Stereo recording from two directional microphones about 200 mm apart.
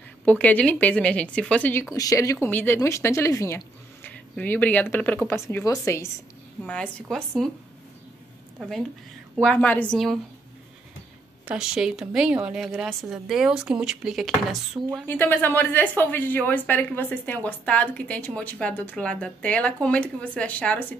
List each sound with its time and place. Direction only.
0.2 s a woman's voice: 5° left (ahead or behind)
6.6 s a woman's voice: 5° left (ahead or behind)
8.5 s a woman's voice: centre (ahead or behind)
11.4 s a woman's voice: 5° right (ahead or behind)
15.0 s a woman's voice: 10° left (ahead or behind)